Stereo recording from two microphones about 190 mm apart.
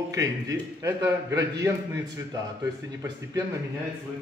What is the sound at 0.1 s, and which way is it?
A man's voice, 15° right (ahead or behind).